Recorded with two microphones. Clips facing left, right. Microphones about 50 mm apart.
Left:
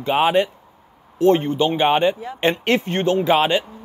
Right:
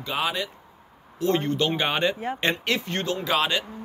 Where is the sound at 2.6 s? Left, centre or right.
Left.